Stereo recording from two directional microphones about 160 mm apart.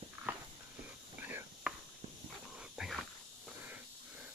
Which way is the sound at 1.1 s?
10° right (ahead or behind).